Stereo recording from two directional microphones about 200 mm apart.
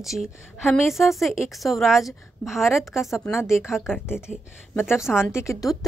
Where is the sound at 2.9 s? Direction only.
15° left (ahead or behind).